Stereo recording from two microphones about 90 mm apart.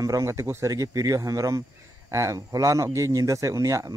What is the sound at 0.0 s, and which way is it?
Speech, 35° right (ahead or behind).